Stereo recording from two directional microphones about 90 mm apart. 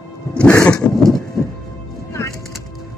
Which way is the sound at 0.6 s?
10° left (ahead or behind).